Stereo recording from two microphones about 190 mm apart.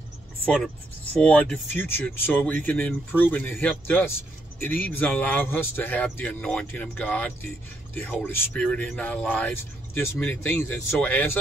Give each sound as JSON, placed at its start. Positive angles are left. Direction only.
{"t": 1.1, "sound": "speech", "side_deg": 5}